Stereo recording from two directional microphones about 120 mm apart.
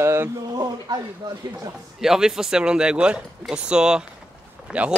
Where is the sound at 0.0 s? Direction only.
20° right (ahead or behind).